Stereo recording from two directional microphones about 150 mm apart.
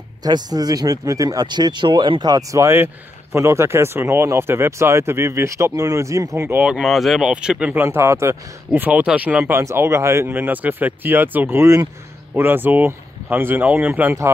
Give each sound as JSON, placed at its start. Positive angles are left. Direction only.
{"t": 0.2, "sound": "speech", "side_deg": -25}
{"t": 6.6, "sound": "speech", "side_deg": -5}